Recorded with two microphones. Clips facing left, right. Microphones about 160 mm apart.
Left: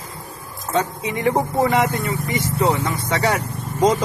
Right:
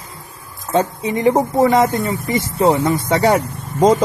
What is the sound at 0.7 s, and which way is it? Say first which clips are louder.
Speech: right 5 dB; 35° right (ahead or behind).